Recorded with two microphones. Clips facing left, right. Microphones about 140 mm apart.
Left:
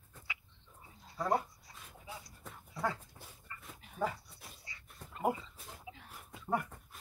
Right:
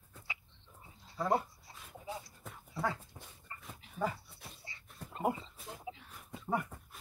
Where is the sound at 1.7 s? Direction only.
30° right (ahead or behind).